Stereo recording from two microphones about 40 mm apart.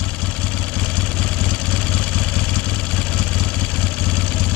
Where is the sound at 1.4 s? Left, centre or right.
Left.